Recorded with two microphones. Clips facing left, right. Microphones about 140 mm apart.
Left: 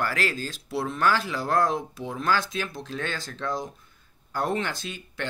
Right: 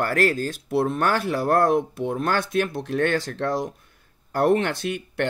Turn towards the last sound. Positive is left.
turn(degrees=-65)  # may be behind; listen again after turning